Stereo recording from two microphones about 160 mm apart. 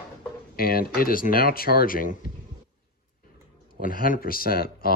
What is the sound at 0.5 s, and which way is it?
Speech, 70° left (ahead or behind).